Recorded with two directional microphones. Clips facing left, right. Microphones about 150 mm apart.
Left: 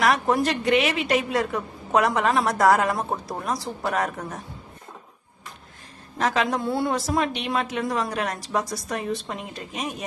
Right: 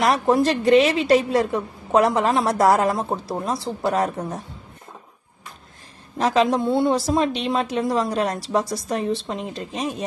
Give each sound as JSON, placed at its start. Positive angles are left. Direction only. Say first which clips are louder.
{"t": 0.0, "sound": "a woman's voice", "louder": "right 3 dB", "side_deg": -30}
{"t": 6.1, "sound": "a woman's voice", "louder": "right 5 dB", "side_deg": -30}